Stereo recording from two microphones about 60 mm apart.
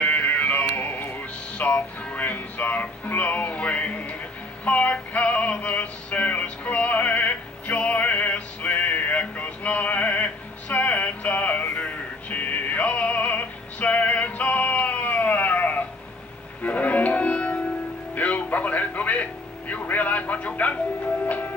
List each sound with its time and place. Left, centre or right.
0.0 s a sound: left
0.7 s music: left
19.7 s vehicle: left
21.3 s music: left